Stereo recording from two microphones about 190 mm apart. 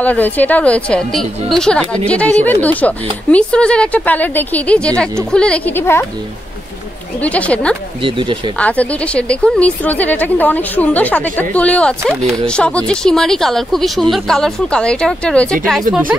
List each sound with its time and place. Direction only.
0.0 s a woman's voice: 10° left (ahead or behind)
7.2 s a woman's voice: 5° left (ahead or behind)
8.0 s speech: 25° right (ahead or behind)
8.5 s a woman's voice: 5° left (ahead or behind)